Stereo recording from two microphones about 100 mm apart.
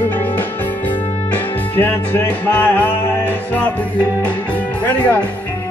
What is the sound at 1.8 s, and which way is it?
Music, 20° left (ahead or behind).